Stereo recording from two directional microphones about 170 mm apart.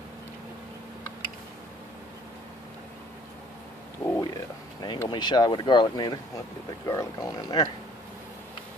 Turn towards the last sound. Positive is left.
turn(degrees=25)  # may be behind; listen again after turning